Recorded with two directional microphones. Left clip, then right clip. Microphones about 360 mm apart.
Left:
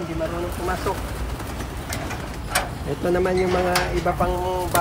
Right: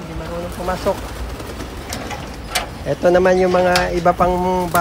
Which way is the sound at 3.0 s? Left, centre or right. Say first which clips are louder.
Right 9 dB; centre.